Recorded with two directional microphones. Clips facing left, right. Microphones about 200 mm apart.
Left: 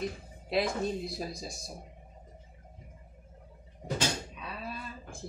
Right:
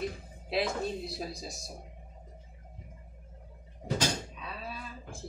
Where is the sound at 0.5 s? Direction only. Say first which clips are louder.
Left 1 dB; centre (ahead or behind).